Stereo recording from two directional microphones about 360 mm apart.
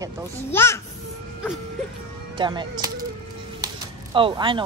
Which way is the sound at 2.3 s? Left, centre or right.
Centre.